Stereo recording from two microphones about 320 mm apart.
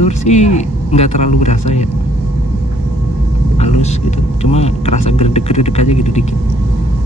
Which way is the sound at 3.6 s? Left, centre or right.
Left.